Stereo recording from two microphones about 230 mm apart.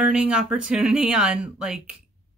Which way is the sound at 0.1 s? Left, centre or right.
Centre.